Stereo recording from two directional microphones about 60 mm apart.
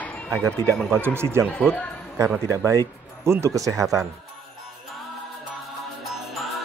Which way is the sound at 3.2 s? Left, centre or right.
Right.